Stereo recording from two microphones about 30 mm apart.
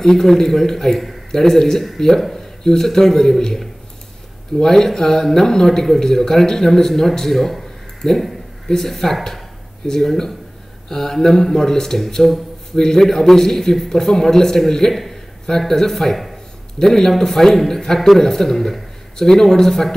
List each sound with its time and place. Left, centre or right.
0.0 s a man's voice: centre
4.6 s a man's voice: centre